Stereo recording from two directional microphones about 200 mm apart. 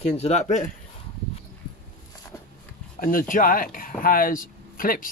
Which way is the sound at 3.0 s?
45° left (ahead or behind).